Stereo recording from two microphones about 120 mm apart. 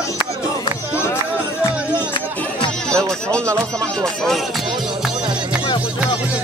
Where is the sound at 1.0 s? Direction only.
20° left (ahead or behind).